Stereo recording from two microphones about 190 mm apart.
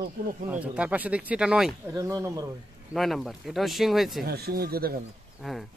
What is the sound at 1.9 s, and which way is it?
Speech, 15° right (ahead or behind).